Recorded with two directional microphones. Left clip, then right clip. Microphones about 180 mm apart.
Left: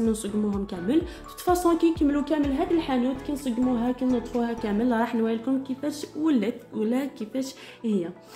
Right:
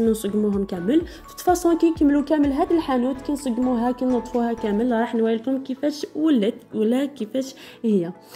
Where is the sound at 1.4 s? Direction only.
15° right (ahead or behind).